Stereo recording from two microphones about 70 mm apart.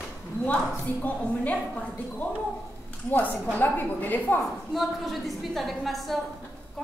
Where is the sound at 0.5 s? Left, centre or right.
Left.